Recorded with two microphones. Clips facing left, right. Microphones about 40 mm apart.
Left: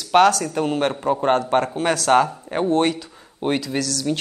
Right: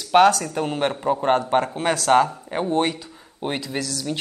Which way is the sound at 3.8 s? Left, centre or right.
Right.